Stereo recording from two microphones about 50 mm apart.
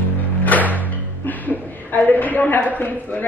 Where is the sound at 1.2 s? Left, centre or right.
Left.